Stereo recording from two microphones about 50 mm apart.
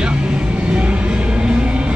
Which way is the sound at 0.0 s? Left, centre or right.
Centre.